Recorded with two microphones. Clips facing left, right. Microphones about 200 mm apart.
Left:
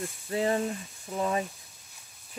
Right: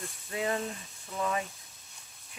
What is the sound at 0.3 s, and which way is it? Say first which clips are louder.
Speech: left 5 dB; 30° left (ahead or behind).